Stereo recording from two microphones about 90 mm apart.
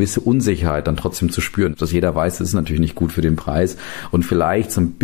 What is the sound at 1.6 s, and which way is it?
Speech, 50° right (ahead or behind).